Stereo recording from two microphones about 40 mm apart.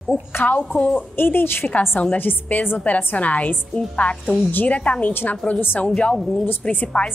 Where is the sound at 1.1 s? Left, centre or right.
Left.